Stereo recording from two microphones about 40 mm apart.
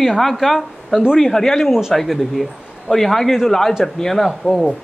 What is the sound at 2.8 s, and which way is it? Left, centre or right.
Speech, centre.